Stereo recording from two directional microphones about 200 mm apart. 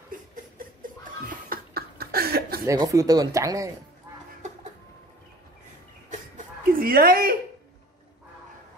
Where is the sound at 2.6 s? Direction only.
20° right (ahead or behind).